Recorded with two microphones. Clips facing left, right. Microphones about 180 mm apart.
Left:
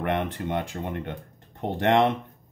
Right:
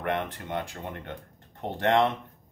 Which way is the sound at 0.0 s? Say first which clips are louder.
Left 3 dB; 20° left (ahead or behind).